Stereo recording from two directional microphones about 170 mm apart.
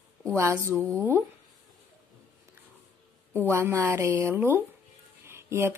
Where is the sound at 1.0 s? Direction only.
15° right (ahead or behind).